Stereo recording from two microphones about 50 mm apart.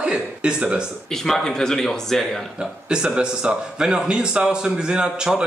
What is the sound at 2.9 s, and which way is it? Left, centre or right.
A man's voice, centre.